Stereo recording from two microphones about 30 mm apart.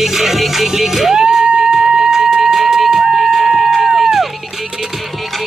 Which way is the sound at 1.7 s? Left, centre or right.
Right.